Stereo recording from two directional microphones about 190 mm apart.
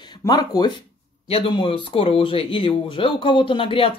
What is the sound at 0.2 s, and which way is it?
Speech, 20° left (ahead or behind).